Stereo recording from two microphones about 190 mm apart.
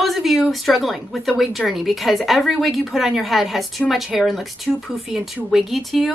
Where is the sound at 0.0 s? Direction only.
Centre (ahead or behind).